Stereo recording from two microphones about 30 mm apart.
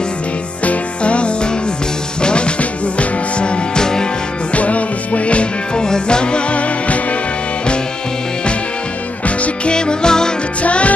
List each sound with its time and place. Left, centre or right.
0.7 s music: left
4.6 s music: left
5.8 s music: left
9.7 s music: left
10.6 s music: left